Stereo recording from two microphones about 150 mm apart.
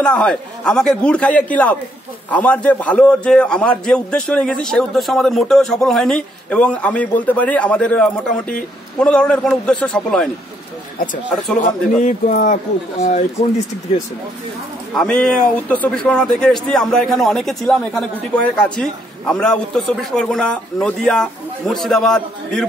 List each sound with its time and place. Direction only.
0.0 s a man's voice: 5° left (ahead or behind)
12.0 s speech: 60° left (ahead or behind)
13.0 s speech: 50° left (ahead or behind)
15.0 s a man's voice: 5° left (ahead or behind)